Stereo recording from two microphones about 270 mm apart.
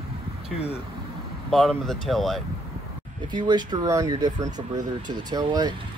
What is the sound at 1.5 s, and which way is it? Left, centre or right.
Speech, centre.